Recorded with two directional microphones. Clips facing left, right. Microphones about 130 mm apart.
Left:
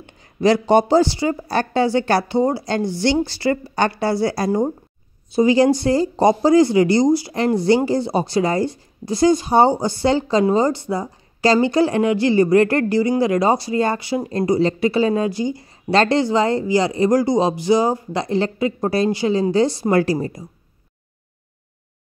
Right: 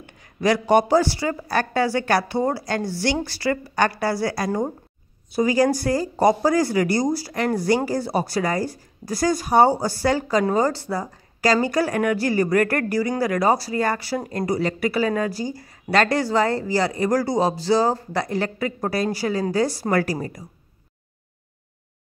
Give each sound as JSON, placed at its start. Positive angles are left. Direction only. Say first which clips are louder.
{"t": 0.0, "sound": "speech", "louder": "left 5 dB", "side_deg": 25}